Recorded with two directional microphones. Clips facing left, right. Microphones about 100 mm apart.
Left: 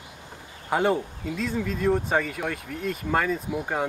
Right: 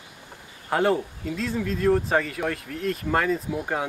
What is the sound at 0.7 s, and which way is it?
Speech, centre (ahead or behind).